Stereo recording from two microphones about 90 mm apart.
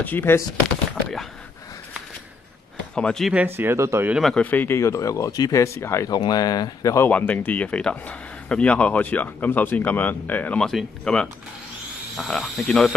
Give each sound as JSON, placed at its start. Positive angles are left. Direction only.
{"t": 0.0, "sound": "speech", "side_deg": 20}
{"t": 2.9, "sound": "speech", "side_deg": 10}
{"t": 3.4, "sound": "speech", "side_deg": -25}
{"t": 4.4, "sound": "speech", "side_deg": 20}
{"t": 4.7, "sound": "speech", "side_deg": 35}
{"t": 6.0, "sound": "speech", "side_deg": 45}
{"t": 7.1, "sound": "speech", "side_deg": 15}
{"t": 10.6, "sound": "speech", "side_deg": 5}